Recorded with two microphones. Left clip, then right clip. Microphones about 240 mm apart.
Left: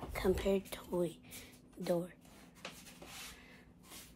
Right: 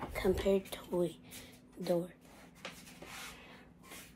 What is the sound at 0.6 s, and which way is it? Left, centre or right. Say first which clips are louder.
Speech: right 2 dB; centre.